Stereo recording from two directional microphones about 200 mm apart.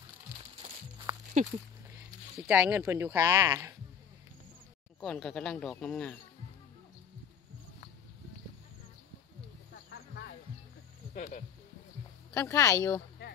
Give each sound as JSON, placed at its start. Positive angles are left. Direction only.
{"t": 0.6, "sound": "music", "side_deg": -20}
{"t": 2.3, "sound": "speech", "side_deg": -5}
{"t": 5.0, "sound": "speech", "side_deg": 5}
{"t": 9.8, "sound": "music", "side_deg": 55}
{"t": 11.1, "sound": "speech", "side_deg": 35}
{"t": 12.4, "sound": "speech", "side_deg": 15}